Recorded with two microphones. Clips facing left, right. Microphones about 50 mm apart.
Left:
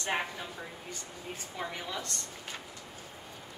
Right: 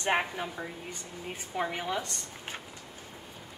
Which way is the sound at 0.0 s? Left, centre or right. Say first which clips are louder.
Right 5 dB; right.